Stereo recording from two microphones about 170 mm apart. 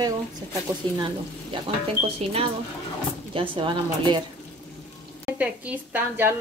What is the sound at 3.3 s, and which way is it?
Speech, 30° right (ahead or behind).